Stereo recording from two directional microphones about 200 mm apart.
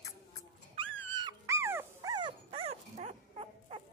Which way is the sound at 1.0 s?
20° right (ahead or behind).